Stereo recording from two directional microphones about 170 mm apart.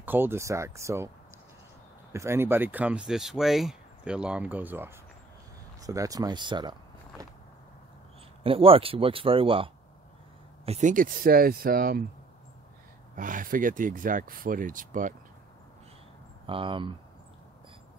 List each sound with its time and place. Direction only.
0.0 s speech: 10° right (ahead or behind)
2.1 s speech: 15° right (ahead or behind)
8.5 s speech: 35° right (ahead or behind); by 12.0 s 60° right (ahead or behind)
13.1 s speech: 50° right (ahead or behind)
16.4 s speech: 30° right (ahead or behind)